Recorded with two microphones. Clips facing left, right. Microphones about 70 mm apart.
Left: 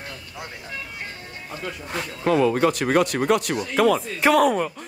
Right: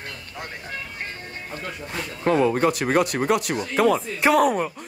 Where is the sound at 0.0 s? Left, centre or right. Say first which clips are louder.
Right 1 dB; right.